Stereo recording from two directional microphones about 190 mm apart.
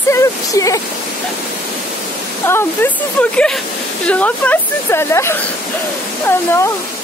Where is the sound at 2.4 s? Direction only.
10° left (ahead or behind).